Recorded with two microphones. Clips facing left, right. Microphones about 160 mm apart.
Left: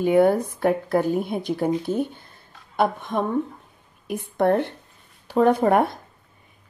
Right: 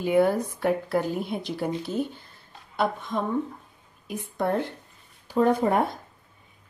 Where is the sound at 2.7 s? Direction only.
55° left (ahead or behind).